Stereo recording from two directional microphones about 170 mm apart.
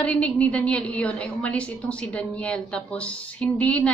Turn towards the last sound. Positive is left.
turn(degrees=10)  # may be behind; listen again after turning